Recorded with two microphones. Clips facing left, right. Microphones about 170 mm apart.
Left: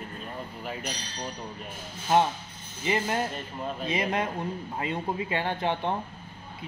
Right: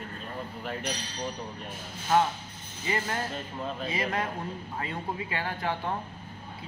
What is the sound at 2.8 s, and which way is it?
Speech, 20° left (ahead or behind).